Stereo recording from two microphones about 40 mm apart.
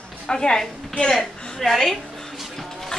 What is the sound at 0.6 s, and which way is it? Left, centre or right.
A woman's voice, centre.